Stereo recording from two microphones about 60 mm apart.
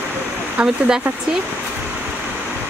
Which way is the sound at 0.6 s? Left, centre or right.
Centre.